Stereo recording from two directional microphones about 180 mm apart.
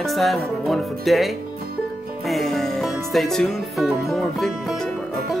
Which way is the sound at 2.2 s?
Centre (ahead or behind).